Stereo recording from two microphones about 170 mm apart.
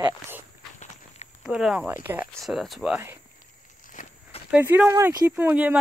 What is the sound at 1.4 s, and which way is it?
Speech, 5° right (ahead or behind).